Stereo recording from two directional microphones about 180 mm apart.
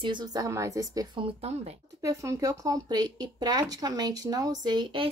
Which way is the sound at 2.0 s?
20° right (ahead or behind).